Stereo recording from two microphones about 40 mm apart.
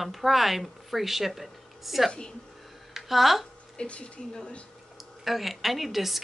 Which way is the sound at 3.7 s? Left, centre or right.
Left.